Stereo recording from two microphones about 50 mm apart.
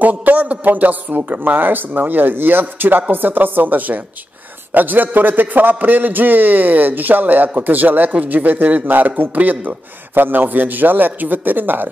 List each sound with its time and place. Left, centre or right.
0.0 s a man's voice: right